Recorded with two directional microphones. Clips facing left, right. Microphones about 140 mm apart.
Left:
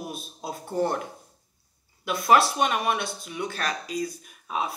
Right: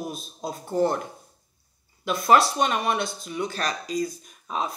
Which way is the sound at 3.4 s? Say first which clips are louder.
Right 1 dB; 35° right (ahead or behind).